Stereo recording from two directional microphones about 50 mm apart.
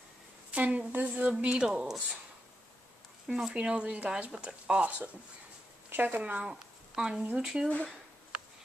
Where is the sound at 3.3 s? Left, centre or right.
Centre.